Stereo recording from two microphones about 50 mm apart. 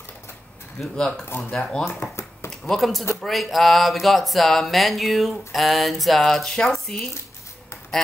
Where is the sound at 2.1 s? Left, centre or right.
Left.